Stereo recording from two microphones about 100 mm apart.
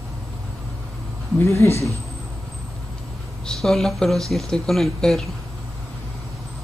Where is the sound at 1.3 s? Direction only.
30° left (ahead or behind).